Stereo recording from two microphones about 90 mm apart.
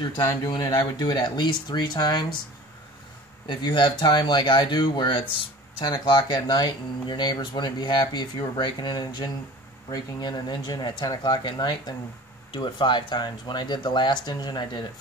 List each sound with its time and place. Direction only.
0.0 s speech: 50° left (ahead or behind)
3.4 s speech: 55° left (ahead or behind)